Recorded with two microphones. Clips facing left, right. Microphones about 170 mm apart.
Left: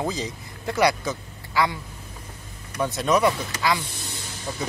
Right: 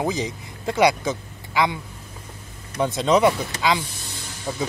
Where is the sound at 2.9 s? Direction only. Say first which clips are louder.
Right 3 dB; 25° right (ahead or behind).